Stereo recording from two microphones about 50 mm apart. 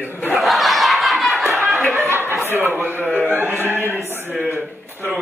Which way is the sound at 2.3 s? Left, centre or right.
Right.